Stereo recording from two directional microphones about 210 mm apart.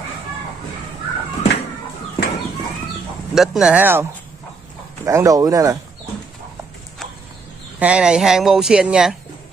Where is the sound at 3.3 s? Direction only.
5° right (ahead or behind).